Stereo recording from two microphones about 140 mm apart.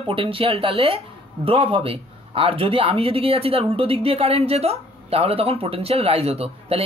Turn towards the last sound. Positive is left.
turn(degrees=-45)  # may be behind; listen again after turning